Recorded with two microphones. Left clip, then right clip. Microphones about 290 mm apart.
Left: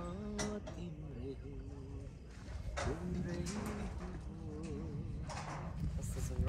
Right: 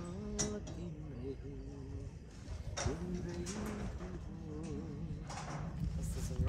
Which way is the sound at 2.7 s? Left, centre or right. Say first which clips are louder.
Even; left.